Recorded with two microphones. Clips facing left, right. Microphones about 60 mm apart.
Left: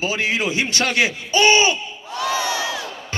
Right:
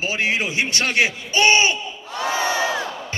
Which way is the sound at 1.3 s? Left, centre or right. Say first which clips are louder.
Left 2 dB; right.